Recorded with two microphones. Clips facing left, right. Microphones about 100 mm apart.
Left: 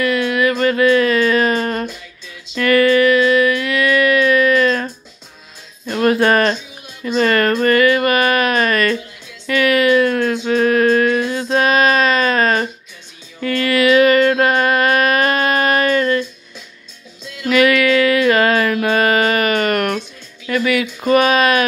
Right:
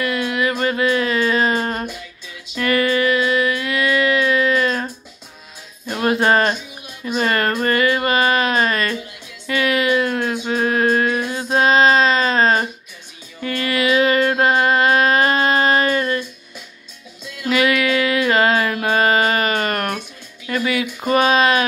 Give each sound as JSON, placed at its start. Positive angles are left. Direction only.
{"t": 0.0, "sound": "music", "side_deg": -20}
{"t": 6.0, "sound": "speech", "side_deg": -20}
{"t": 7.6, "sound": "a sound", "side_deg": -20}
{"t": 9.5, "sound": "music", "side_deg": -20}
{"t": 13.4, "sound": "mantra", "side_deg": -20}
{"t": 17.5, "sound": "music", "side_deg": -25}
{"t": 20.8, "sound": "a sound", "side_deg": -20}